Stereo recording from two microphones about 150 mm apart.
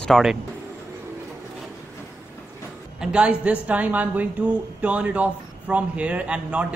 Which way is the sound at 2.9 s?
5° right (ahead or behind).